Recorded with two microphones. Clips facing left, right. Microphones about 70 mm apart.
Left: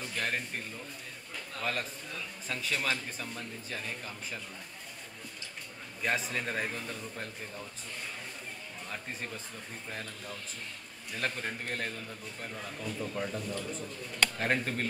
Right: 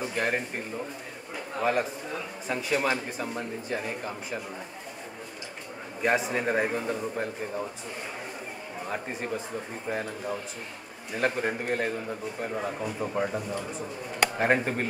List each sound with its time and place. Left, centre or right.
0.0 s a man's voice: centre
6.0 s a man's voice: centre
8.8 s a man's voice: centre